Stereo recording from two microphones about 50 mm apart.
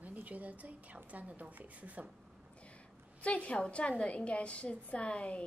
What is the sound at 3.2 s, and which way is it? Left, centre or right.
A woman's voice, left.